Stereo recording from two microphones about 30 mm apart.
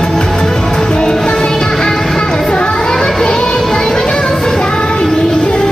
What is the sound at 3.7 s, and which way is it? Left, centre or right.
Music, left.